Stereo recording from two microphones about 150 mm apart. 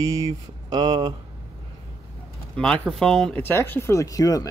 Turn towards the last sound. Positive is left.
turn(degrees=25)  # may be behind; listen again after turning